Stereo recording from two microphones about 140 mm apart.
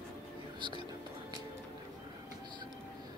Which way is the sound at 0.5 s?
35° right (ahead or behind).